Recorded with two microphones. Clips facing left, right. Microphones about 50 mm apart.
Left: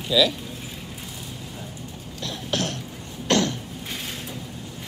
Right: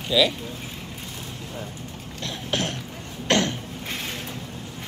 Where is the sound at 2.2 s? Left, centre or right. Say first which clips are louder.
Even; centre.